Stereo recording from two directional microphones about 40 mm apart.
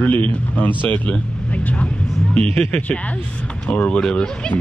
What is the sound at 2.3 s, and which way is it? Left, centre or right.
Speech, left.